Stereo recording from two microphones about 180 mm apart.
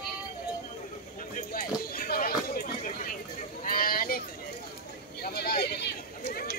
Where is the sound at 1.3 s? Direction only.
55° left (ahead or behind).